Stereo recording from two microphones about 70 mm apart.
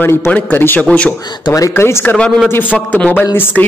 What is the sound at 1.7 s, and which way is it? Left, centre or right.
Speech, left.